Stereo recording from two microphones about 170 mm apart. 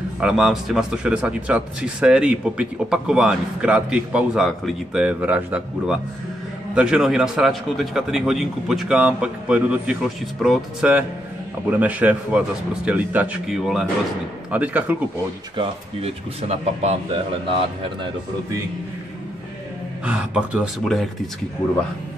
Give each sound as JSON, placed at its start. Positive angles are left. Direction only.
{"t": 0.2, "sound": "speech", "side_deg": -5}
{"t": 15.5, "sound": "speech", "side_deg": -35}
{"t": 20.1, "sound": "speech", "side_deg": -5}